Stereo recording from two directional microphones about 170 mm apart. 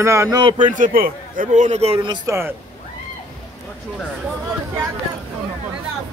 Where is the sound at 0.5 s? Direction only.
50° right (ahead or behind); by 2.3 s 25° right (ahead or behind).